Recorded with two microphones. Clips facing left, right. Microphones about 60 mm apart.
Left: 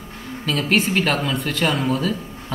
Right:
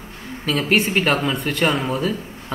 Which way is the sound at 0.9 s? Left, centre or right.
Centre.